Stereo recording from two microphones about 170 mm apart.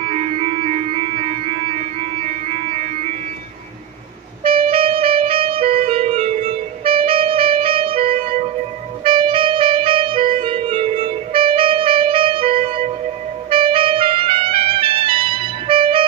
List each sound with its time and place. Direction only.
0.0 s music: 35° right (ahead or behind)
4.4 s music: 60° right (ahead or behind)
4.6 s music: 35° right (ahead or behind)
9.0 s clarinet: 30° right (ahead or behind)
13.5 s music: 30° right (ahead or behind)